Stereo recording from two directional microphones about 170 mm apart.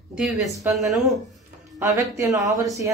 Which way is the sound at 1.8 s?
20° right (ahead or behind).